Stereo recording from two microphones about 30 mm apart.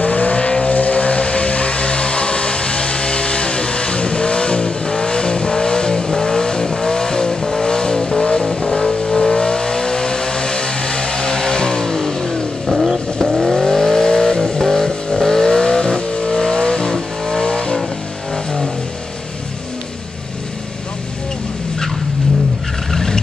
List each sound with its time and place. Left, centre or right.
0.0 s vehicle: left
0.7 s a sound: left
8.5 s vehicle: left
12.6 s vehicle: centre
13.4 s vehicle: centre; by 17.7 s left
18.3 s vehicle: centre
22.8 s vehicle: centre